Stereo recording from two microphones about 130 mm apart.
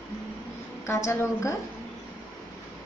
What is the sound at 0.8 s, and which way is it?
Speech, 20° left (ahead or behind).